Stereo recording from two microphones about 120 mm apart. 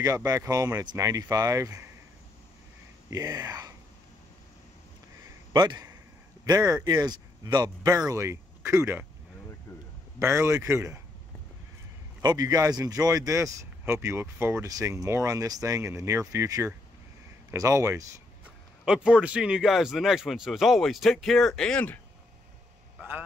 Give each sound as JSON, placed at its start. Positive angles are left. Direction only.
{"t": 0.0, "sound": "speech", "side_deg": -30}
{"t": 3.1, "sound": "speech", "side_deg": -30}
{"t": 5.5, "sound": "a sound", "side_deg": -40}
{"t": 6.4, "sound": "speech", "side_deg": -30}
{"t": 9.7, "sound": "a sound", "side_deg": 30}
{"t": 10.1, "sound": "speech", "side_deg": -20}
{"t": 12.2, "sound": "speech", "side_deg": -30}
{"t": 18.9, "sound": "speech", "side_deg": -5}